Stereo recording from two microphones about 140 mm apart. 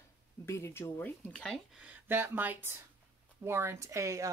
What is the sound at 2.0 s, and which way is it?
Speech, 15° right (ahead or behind).